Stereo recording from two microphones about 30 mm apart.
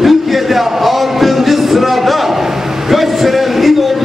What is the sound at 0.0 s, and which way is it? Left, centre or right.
Music, centre.